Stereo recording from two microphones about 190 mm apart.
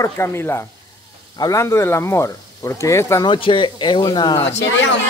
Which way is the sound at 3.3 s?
25° left (ahead or behind).